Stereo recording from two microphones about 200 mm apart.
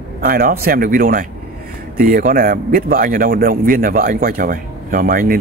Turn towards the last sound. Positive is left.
turn(degrees=-45)  # may be behind; listen again after turning